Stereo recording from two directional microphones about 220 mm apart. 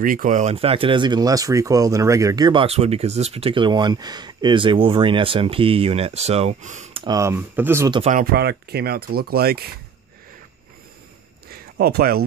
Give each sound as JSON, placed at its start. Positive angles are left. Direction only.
{"t": 0.0, "sound": "speech", "side_deg": -35}
{"t": 7.1, "sound": "speech", "side_deg": -15}
{"t": 8.0, "sound": "speech", "side_deg": -35}
{"t": 11.5, "sound": "a sound", "side_deg": -45}